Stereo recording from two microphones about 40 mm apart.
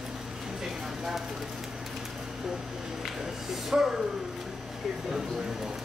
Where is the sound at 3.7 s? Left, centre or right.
Centre.